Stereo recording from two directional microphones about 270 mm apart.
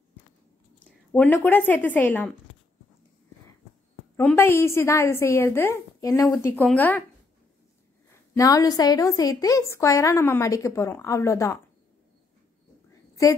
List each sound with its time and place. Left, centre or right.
1.1 s a woman's voice: centre
4.2 s a woman's voice: centre
8.4 s a woman's voice: centre
13.1 s a sound: centre